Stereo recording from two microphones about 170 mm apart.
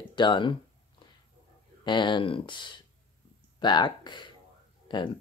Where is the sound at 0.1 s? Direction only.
25° left (ahead or behind).